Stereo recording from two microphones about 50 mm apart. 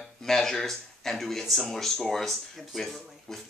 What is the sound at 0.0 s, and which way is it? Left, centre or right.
Speech, centre.